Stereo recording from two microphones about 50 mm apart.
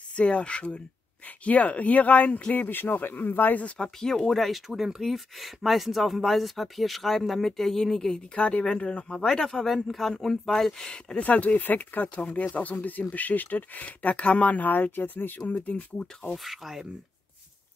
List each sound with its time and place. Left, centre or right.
0.1 s speech: left
3.6 s speech: left
4.0 s speech: centre
4.6 s speech: centre
8.4 s speech: left
9.1 s speech: centre
11.1 s speech: left
15.6 s speech: left
16.4 s speech: centre